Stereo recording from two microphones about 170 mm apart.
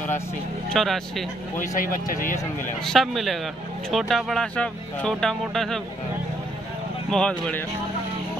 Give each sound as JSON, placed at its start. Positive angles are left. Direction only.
{"t": 0.7, "sound": "speech", "side_deg": 0}
{"t": 1.8, "sound": "speech", "side_deg": 55}
{"t": 2.8, "sound": "speech", "side_deg": 0}
{"t": 7.1, "sound": "speech", "side_deg": 5}